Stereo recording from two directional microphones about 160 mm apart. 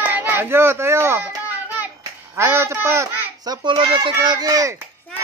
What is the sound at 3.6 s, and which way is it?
Speech, 30° right (ahead or behind).